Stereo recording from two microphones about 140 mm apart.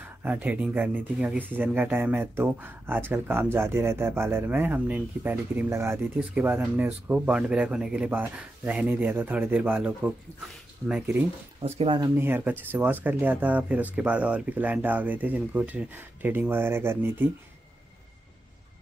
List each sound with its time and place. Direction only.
0.0 s speech: 10° right (ahead or behind)
11.6 s speech: 45° right (ahead or behind)
12.2 s speech: 15° right (ahead or behind)